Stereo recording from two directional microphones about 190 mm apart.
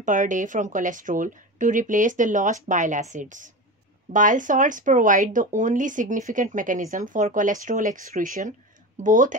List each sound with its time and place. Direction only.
0.0 s speech: 40° right (ahead or behind)